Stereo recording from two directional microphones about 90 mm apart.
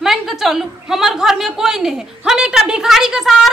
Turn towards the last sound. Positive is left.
turn(degrees=-5)  # may be behind; listen again after turning